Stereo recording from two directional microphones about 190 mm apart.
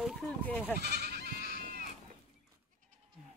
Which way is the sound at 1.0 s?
55° right (ahead or behind).